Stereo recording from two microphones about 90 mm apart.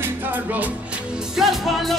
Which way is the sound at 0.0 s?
20° right (ahead or behind).